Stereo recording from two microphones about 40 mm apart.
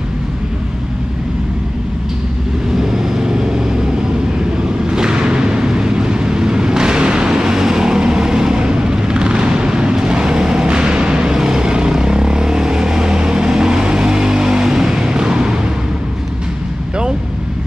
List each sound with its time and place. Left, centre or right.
2.8 s vehicle: centre
4.8 s vehicle: right